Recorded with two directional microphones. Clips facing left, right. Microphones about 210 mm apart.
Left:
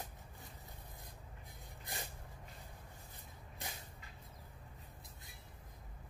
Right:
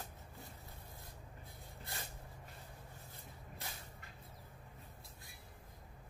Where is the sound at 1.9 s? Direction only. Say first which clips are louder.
Left 3 dB; 15° left (ahead or behind).